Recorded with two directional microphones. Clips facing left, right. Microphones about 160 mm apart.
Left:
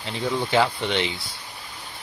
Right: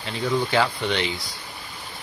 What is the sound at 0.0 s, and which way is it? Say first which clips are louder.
Speech: right 2 dB; 20° left (ahead or behind).